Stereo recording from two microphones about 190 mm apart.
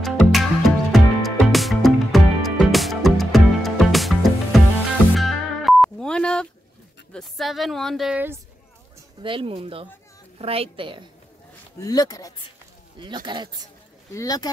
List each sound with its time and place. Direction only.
0.0 s music: centre (ahead or behind)
7.1 s speech: centre (ahead or behind)
9.2 s speech: 25° right (ahead or behind)
11.8 s speech: 20° left (ahead or behind)
13.0 s speech: 25° right (ahead or behind)
14.1 s speech: 20° left (ahead or behind)